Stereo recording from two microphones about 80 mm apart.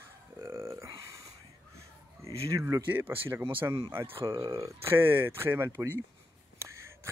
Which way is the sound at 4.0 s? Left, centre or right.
Right.